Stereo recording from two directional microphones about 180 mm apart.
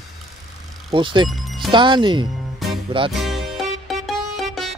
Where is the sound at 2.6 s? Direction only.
Centre (ahead or behind).